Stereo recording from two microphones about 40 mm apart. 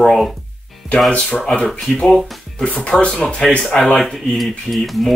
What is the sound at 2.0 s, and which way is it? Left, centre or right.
Speech, centre.